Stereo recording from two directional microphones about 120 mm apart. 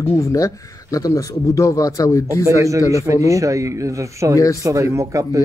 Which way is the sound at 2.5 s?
25° right (ahead or behind).